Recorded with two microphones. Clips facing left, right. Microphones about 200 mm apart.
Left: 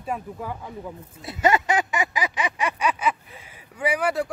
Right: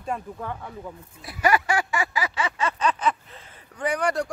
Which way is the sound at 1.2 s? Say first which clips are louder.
Left 1 dB; 25° left (ahead or behind).